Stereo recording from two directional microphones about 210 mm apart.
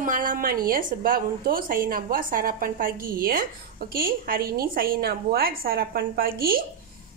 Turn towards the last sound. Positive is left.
turn(degrees=-45)  # may be behind; listen again after turning